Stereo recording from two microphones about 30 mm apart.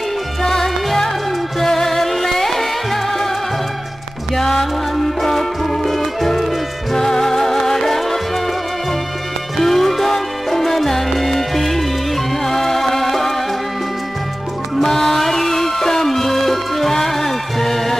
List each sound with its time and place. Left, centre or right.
0.4 s music: centre
4.4 s music: centre
9.6 s music: centre
14.8 s music: centre